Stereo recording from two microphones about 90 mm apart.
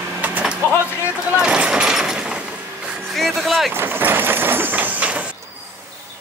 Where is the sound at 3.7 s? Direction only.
25° right (ahead or behind).